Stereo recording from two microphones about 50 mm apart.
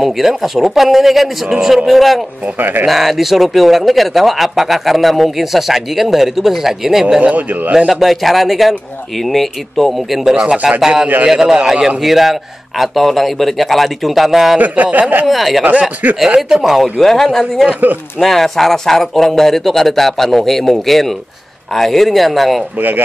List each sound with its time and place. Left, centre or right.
0.0 s a man's voice: centre
7.2 s speech: right
7.9 s speech: centre
10.4 s speech: right
11.2 s a man's voice: centre
14.6 s speech: right
15.2 s speech: centre
16.0 s speech: right
16.4 s a man's voice: centre
17.0 s speech: centre
22.8 s speech: right